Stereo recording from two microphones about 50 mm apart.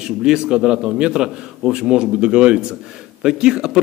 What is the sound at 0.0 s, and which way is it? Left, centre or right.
A man's voice, centre.